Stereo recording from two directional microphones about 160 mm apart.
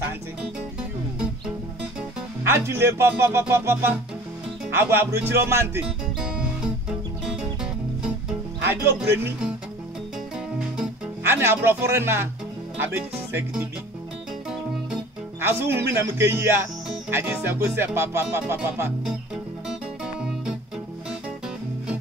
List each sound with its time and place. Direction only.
2.4 s speech: 15° right (ahead or behind)
5.9 s music: 5° right (ahead or behind)
8.8 s speech: 15° right (ahead or behind)
10.8 s speech: 15° right (ahead or behind)
13.3 s speech: 15° right (ahead or behind)
15.4 s speech: 15° right (ahead or behind)
19.0 s music: 5° right (ahead or behind)